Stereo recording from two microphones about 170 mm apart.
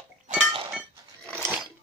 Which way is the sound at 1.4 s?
10° right (ahead or behind).